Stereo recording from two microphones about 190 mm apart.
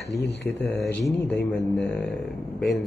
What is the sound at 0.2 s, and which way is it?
Speech, 65° left (ahead or behind).